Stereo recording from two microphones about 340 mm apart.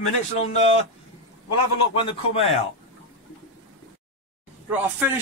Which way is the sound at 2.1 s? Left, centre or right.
Centre.